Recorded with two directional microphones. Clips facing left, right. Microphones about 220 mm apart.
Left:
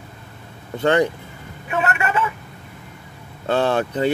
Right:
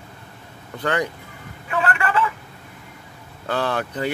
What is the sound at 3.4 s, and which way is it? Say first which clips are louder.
Speech: left 5 dB; 25° left (ahead or behind).